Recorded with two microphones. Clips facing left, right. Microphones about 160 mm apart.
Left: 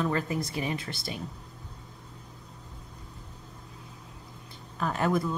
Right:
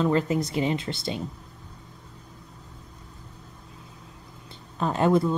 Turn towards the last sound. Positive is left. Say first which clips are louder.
# right 6 dB
turn(degrees=-25)  # may be behind; listen again after turning